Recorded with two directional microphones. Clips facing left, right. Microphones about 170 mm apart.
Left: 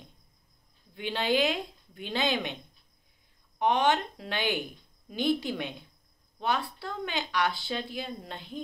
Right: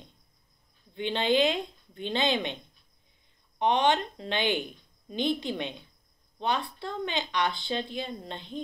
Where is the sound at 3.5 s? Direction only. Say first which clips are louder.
Right 1 dB; 20° right (ahead or behind).